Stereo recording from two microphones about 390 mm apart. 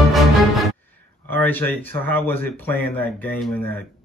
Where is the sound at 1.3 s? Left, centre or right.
Centre.